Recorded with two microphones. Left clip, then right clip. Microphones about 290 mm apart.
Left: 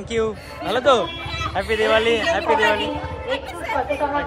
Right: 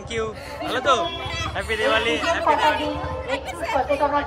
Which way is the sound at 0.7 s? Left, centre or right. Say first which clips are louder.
Left 3 dB; centre.